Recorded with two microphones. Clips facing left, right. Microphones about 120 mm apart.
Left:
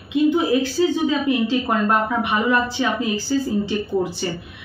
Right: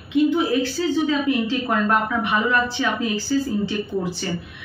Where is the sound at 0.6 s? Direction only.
20° left (ahead or behind).